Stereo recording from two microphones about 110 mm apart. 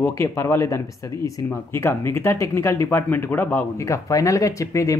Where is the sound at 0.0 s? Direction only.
25° left (ahead or behind).